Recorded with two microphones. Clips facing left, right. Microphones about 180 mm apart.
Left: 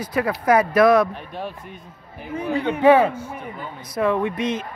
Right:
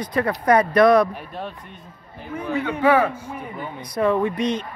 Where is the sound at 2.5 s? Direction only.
25° left (ahead or behind).